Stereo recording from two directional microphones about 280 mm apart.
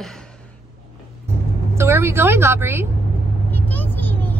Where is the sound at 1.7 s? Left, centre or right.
Centre.